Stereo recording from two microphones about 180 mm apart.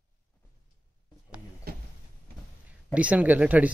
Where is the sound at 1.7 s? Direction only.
60° right (ahead or behind).